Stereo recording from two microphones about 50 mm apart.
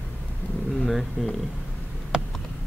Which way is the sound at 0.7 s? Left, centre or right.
Centre.